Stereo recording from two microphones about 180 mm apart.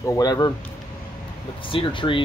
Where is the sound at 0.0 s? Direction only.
20° left (ahead or behind).